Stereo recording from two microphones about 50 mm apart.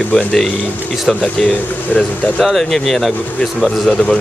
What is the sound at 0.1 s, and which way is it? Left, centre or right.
Speech, centre.